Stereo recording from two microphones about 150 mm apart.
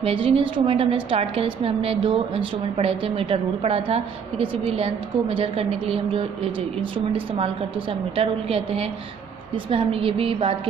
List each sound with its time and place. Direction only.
0.0 s a woman's voice: 40° right (ahead or behind)